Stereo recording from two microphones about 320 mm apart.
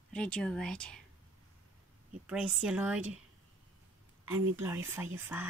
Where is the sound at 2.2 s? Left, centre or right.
Centre.